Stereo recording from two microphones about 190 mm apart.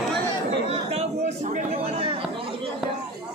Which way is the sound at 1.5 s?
35° right (ahead or behind).